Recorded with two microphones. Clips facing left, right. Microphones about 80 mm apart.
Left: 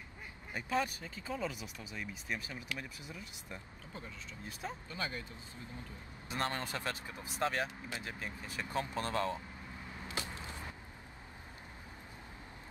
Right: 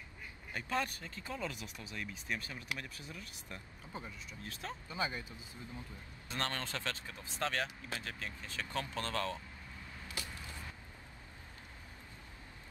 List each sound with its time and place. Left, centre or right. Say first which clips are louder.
0.5 s speech: left 2 dB; centre
4.8 s speech: right 5 dB; centre
6.2 s speech: left 2 dB; centre
10.0 s a sound: left 4 dB; left